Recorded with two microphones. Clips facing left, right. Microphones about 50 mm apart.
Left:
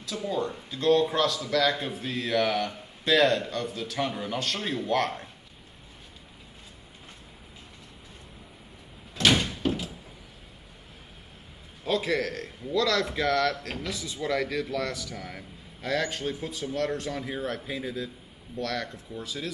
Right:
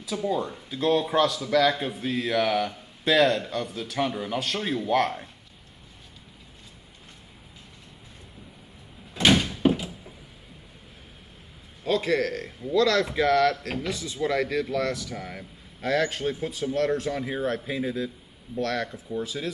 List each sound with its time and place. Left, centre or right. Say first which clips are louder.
0.0 s speech: right 3 dB; centre
9.1 s door: right 2 dB; centre
11.8 s speech: right 3 dB; centre